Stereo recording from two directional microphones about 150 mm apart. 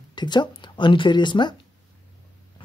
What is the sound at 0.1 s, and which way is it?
Speech, 30° left (ahead or behind).